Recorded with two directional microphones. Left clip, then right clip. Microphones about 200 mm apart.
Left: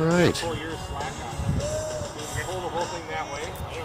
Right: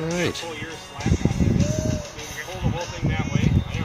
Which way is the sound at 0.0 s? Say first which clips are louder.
Left 4 dB; 5° left (ahead or behind).